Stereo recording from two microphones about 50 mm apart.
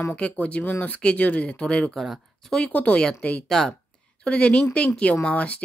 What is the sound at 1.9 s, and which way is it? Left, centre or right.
Speech, centre.